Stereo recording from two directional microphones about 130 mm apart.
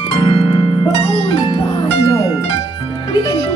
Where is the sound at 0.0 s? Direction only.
45° left (ahead or behind).